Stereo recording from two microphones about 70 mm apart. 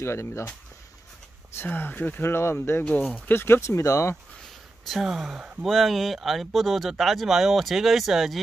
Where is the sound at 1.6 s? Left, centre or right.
Left.